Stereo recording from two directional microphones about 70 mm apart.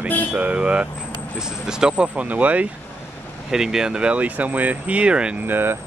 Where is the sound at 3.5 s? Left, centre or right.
Centre.